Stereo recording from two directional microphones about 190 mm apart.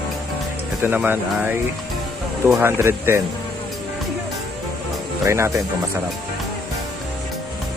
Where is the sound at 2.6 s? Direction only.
10° right (ahead or behind).